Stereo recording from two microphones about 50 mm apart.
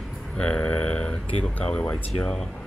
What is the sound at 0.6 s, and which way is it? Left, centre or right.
Speech, left.